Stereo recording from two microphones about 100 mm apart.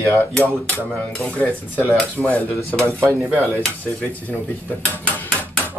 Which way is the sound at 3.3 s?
25° right (ahead or behind).